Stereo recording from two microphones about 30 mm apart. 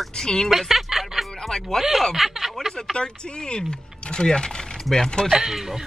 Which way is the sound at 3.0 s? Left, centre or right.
Left.